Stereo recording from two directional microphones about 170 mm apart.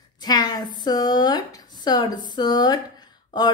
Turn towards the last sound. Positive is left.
turn(degrees=25)  # may be behind; listen again after turning